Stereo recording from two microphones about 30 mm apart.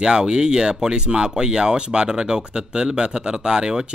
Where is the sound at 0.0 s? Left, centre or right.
Right.